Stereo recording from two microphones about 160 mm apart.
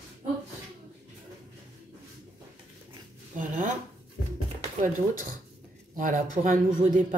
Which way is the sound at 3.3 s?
55° right (ahead or behind).